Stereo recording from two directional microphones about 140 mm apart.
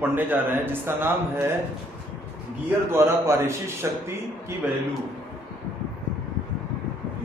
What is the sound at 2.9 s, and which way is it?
A man's voice, 20° right (ahead or behind).